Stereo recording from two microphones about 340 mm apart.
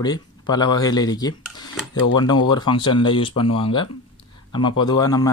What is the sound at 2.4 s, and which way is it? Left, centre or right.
Speech, centre.